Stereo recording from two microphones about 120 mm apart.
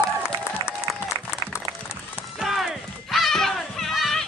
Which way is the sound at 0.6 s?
40° right (ahead or behind).